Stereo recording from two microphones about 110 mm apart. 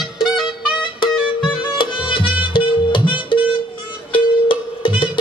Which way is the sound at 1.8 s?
50° left (ahead or behind).